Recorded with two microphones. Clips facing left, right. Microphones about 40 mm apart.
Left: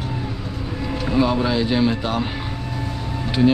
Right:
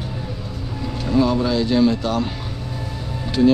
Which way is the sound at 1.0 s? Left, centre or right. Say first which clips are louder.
Right 1 dB; left.